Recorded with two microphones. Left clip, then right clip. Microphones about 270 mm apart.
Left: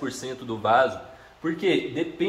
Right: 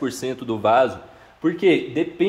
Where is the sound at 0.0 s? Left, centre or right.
Right.